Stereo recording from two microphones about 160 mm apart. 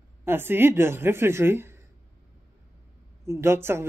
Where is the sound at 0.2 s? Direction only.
15° right (ahead or behind).